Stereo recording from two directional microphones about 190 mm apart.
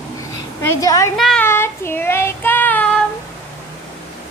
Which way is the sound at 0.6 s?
15° left (ahead or behind).